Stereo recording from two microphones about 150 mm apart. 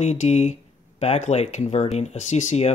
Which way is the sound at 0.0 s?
50° left (ahead or behind).